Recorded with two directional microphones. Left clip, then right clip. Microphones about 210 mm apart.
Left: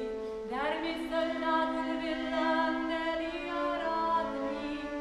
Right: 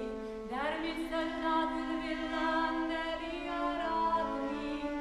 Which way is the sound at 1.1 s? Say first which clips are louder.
Left 3 dB; 5° right (ahead or behind).